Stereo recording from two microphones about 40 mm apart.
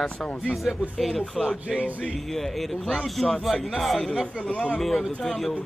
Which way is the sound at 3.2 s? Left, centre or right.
Centre.